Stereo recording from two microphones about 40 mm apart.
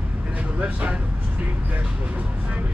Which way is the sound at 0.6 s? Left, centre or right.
Right.